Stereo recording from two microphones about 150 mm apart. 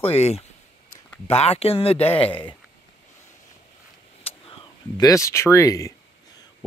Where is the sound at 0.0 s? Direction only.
40° left (ahead or behind).